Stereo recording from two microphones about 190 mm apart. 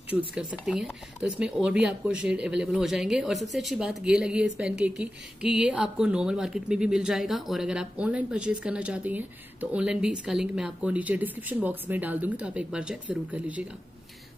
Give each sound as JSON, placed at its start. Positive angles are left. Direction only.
{"t": 0.3, "sound": "speech", "side_deg": -5}